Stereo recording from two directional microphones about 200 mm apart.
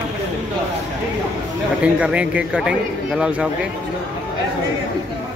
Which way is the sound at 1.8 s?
5° right (ahead or behind).